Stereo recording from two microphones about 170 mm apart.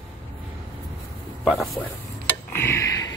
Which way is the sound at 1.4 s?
Centre (ahead or behind).